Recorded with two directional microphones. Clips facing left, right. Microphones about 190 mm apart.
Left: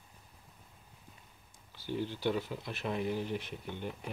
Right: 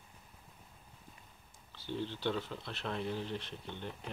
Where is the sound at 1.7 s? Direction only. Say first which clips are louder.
Left 3 dB; 10° left (ahead or behind).